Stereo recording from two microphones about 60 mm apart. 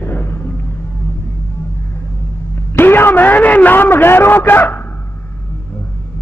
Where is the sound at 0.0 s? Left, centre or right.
Left.